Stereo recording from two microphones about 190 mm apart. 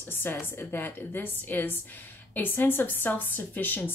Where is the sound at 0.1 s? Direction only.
10° left (ahead or behind).